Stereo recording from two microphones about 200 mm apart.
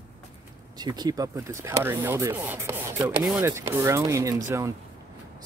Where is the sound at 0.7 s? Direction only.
20° right (ahead or behind).